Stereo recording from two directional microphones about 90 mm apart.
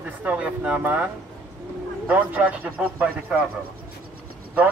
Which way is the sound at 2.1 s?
15° right (ahead or behind).